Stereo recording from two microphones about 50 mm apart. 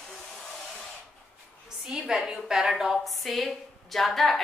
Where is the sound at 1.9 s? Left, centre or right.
Centre.